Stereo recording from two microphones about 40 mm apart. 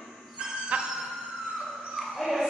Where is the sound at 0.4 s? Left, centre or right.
Right.